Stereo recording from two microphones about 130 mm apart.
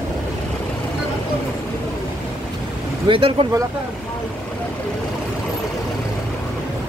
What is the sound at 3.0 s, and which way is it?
Speech, 45° right (ahead or behind).